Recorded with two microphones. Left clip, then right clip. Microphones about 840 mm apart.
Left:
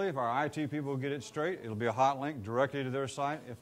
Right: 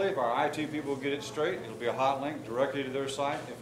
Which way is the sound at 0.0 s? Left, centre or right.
Left.